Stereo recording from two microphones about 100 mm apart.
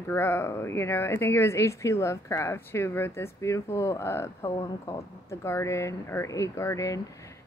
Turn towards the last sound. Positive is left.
turn(degrees=35)  # may be behind; listen again after turning